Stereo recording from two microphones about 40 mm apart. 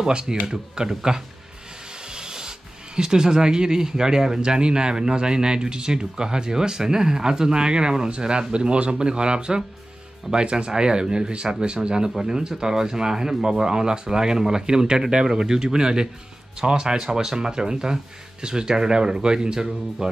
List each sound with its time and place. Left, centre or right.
0.0 s speech: centre
2.0 s rub: centre
3.0 s speech: centre